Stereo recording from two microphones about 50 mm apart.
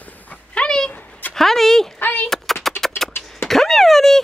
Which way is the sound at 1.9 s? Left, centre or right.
Left.